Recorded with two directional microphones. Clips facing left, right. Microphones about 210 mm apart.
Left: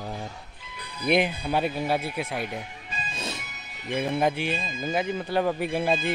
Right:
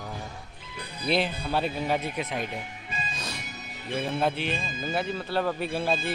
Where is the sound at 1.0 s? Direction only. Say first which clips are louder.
Left 3 dB; 15° left (ahead or behind).